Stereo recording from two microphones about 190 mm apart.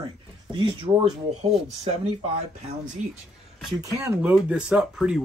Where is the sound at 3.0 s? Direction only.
40° right (ahead or behind).